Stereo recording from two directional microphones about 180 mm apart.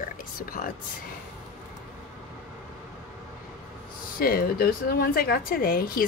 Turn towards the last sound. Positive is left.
turn(degrees=55)  # may be behind; listen again after turning